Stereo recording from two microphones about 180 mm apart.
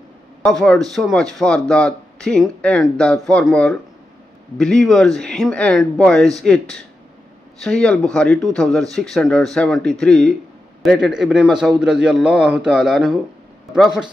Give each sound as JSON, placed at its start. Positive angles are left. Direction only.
{"t": 0.4, "sound": "speech", "side_deg": 0}